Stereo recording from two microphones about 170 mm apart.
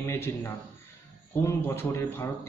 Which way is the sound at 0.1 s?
15° left (ahead or behind).